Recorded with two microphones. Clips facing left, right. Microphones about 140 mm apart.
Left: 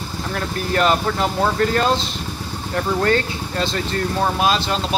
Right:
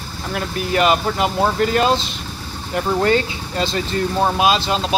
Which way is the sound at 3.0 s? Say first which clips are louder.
Right 1 dB; 15° right (ahead or behind).